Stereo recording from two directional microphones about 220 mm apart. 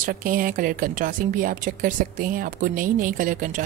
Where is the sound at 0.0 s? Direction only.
40° right (ahead or behind).